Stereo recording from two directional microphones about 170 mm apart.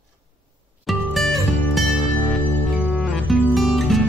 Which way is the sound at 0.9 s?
Centre (ahead or behind).